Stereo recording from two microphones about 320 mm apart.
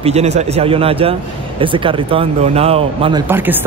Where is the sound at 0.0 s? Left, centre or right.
Centre.